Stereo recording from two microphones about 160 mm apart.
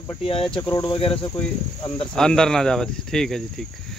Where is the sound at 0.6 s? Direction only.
25° left (ahead or behind).